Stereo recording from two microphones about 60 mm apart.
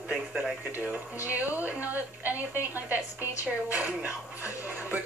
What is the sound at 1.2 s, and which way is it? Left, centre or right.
A woman's voice, right.